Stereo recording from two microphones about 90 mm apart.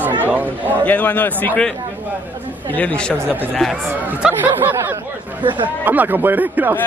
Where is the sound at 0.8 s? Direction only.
20° left (ahead or behind).